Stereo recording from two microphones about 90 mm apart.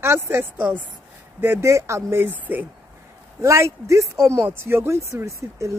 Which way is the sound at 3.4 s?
35° right (ahead or behind).